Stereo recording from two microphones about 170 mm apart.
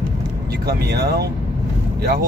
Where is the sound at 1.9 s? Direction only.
65° right (ahead or behind).